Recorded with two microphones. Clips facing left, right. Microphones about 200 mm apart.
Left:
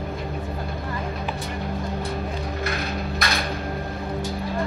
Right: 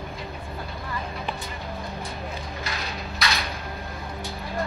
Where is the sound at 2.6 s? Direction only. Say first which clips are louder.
Left 6 dB; 55° left (ahead or behind).